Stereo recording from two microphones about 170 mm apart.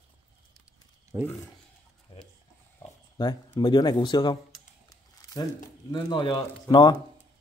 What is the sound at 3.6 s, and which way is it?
Speech, 25° left (ahead or behind).